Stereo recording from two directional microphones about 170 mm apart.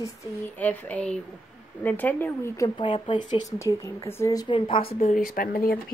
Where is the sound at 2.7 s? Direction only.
30° left (ahead or behind).